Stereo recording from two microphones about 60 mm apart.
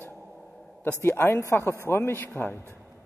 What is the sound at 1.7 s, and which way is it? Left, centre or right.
Speech, left.